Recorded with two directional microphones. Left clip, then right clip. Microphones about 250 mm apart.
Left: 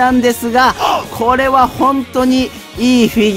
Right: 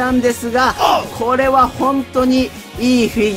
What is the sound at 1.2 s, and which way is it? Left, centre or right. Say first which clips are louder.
Speech: left 3 dB; left.